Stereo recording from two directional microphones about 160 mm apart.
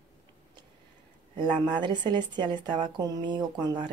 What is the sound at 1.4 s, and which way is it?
Speech, 30° right (ahead or behind).